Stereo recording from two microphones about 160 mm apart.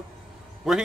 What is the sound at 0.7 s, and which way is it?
Speech, centre (ahead or behind).